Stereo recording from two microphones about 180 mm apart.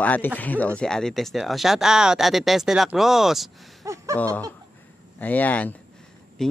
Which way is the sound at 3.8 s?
15° right (ahead or behind).